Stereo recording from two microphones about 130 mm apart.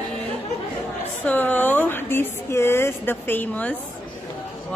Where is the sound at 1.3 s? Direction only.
15° left (ahead or behind).